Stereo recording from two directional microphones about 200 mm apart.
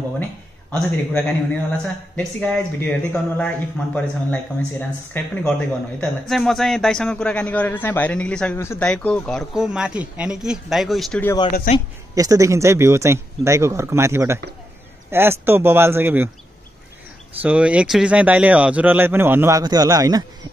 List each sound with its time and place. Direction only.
0.7 s a man's voice: 5° left (ahead or behind)
11.7 s speech: 40° left (ahead or behind)
12.2 s speech: 15° right (ahead or behind)
17.4 s speech: 5° right (ahead or behind)